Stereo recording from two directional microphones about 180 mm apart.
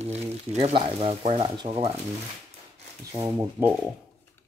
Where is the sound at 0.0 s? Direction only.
35° right (ahead or behind).